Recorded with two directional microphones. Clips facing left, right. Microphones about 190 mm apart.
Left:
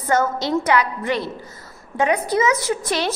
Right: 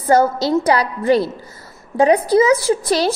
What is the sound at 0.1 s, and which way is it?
A woman's voice, 35° right (ahead or behind).